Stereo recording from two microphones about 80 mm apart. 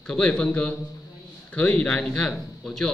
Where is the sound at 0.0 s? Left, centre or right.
Centre.